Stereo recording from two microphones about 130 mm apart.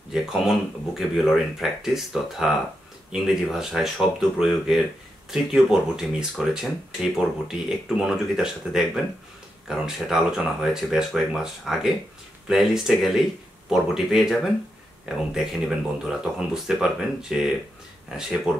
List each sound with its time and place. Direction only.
0.1 s speech: 5° right (ahead or behind)